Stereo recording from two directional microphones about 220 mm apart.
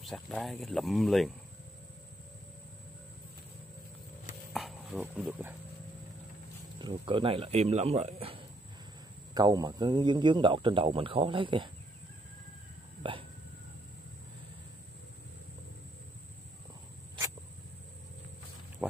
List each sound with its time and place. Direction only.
0.0 s speech: centre (ahead or behind)
4.6 s speech: centre (ahead or behind)
6.8 s speech: 20° right (ahead or behind)
18.8 s pig: 5° right (ahead or behind)